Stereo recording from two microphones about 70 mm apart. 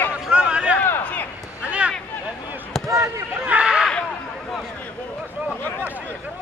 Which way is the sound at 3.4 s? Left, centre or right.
Centre.